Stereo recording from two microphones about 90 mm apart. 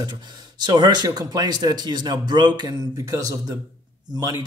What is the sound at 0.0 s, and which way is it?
Speech, 55° right (ahead or behind).